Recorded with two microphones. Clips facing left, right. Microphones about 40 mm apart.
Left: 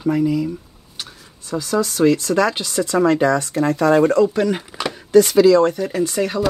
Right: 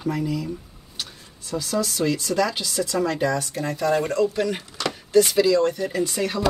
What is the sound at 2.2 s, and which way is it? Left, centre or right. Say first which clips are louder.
Speech: left 5 dB; left.